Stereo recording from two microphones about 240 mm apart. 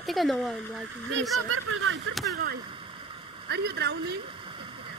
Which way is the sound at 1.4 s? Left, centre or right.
Right.